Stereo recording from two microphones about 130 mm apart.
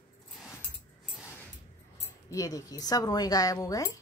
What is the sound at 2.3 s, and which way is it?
Speech, 25° left (ahead or behind).